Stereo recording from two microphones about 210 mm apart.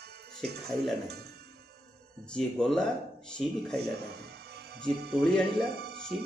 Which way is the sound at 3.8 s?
50° right (ahead or behind).